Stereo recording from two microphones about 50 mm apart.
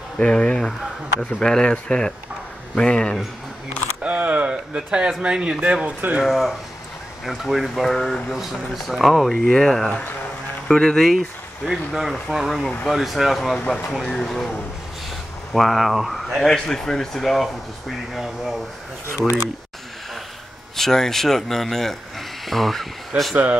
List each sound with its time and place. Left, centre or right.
0.2 s speech: left
4.0 s speech: right
4.7 s speech: centre
6.2 s speech: centre
9.3 s speech: centre
11.6 s speech: centre
15.5 s speech: centre
20.7 s speech: centre
23.3 s speech: right